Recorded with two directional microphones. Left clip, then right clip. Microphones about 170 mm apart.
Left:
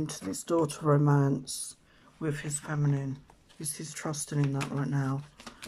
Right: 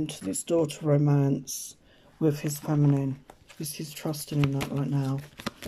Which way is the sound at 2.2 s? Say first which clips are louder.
Right 7 dB; 15° right (ahead or behind).